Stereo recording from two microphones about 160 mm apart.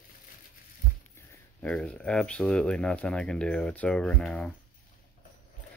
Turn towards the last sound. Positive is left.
turn(degrees=5)  # may be behind; listen again after turning